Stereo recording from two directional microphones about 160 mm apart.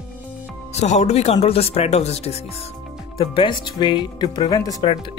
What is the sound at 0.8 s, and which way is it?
Speech, 45° left (ahead or behind).